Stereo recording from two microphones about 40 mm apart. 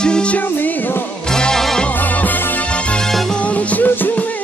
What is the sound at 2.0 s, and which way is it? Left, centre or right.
Music, left.